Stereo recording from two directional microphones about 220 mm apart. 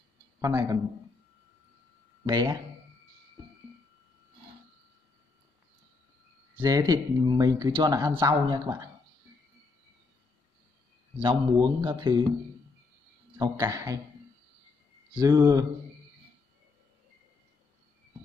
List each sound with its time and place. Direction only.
0.4 s speech: 15° right (ahead or behind)
2.2 s speech: 20° right (ahead or behind)
6.6 s speech: 15° right (ahead or behind)
11.1 s speech: 20° right (ahead or behind)
13.4 s speech: 15° right (ahead or behind)
15.1 s speech: 15° right (ahead or behind)